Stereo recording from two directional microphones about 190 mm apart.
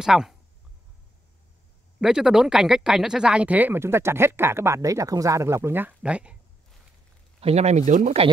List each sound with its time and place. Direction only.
0.0 s speech: centre (ahead or behind)
2.0 s speech: 5° right (ahead or behind)
7.3 s speech: 35° right (ahead or behind)